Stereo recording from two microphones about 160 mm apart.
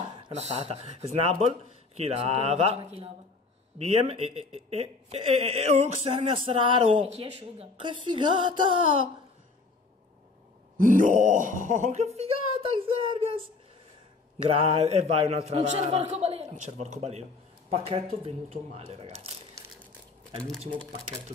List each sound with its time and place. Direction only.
0.3 s speech: 40° right (ahead or behind)
10.8 s speech: 55° right (ahead or behind); by 13.4 s 30° right (ahead or behind)
14.5 s speech: 35° right (ahead or behind)